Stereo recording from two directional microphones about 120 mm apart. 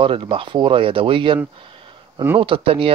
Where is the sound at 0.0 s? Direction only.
50° right (ahead or behind).